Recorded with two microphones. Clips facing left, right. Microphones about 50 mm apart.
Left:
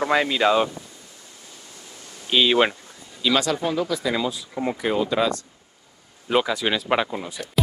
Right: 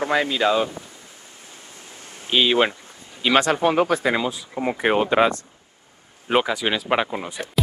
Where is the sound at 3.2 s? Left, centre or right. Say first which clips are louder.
Right 4 dB; right.